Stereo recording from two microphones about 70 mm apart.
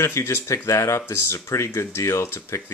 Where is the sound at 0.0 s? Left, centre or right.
Left.